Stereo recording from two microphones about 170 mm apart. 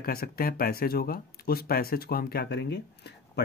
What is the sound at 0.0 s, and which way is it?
Speech, 60° left (ahead or behind).